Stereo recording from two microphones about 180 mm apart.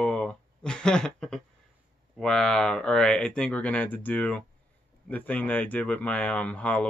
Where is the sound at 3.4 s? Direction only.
5° left (ahead or behind).